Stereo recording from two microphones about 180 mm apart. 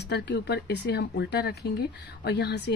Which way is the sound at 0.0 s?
65° left (ahead or behind).